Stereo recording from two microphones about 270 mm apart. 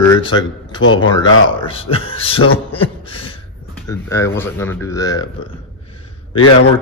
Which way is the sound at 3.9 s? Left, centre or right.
Centre.